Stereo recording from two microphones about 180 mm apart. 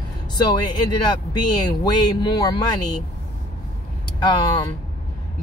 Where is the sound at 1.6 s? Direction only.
20° left (ahead or behind).